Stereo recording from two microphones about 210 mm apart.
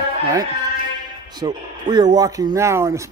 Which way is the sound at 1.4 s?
20° right (ahead or behind).